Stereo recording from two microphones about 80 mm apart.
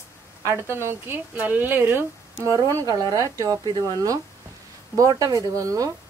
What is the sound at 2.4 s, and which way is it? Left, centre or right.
Speech, right.